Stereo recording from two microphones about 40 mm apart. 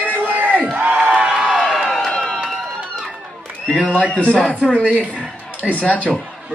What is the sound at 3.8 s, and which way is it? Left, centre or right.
Speech, right.